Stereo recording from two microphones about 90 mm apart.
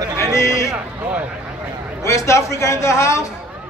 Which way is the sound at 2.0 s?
35° left (ahead or behind).